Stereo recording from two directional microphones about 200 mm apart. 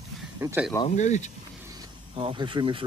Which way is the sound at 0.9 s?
35° left (ahead or behind).